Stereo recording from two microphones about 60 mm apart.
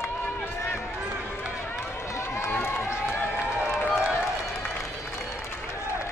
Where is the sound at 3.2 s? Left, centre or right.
Left.